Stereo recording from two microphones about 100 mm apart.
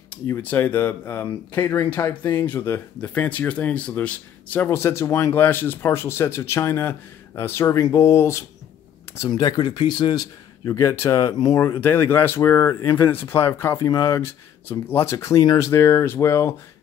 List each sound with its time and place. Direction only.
0.1 s speech: 15° left (ahead or behind)
9.3 s speech: 45° left (ahead or behind)
10.6 s speech: 30° left (ahead or behind)
11.8 s speech: 20° left (ahead or behind)